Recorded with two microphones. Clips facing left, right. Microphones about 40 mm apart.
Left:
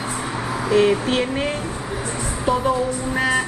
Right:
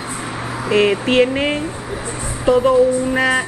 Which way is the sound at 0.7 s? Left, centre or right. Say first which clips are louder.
Right 2 dB; right.